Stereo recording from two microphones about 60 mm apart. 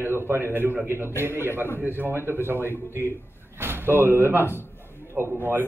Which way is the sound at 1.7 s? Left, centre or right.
Right.